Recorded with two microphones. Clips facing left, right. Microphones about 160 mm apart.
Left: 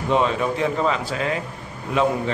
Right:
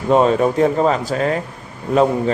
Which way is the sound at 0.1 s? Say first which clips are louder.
Right 7 dB; 45° right (ahead or behind).